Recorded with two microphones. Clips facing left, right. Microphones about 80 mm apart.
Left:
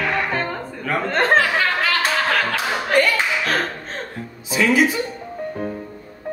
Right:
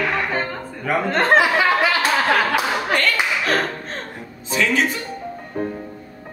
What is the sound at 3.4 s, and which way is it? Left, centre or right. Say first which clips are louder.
Music: right 1 dB; centre.